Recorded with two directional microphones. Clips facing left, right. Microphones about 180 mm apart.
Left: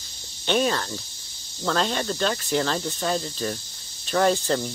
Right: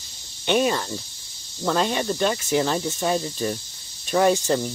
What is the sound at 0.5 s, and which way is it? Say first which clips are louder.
Speech: right 2 dB; 10° right (ahead or behind).